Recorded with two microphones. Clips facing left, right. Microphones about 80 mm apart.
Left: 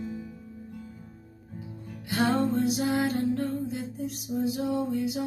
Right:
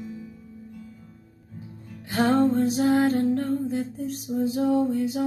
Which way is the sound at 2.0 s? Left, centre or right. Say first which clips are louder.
Right 5 dB; right.